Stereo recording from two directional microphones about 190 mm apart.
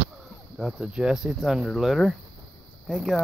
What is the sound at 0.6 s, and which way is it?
Speech, 5° right (ahead or behind).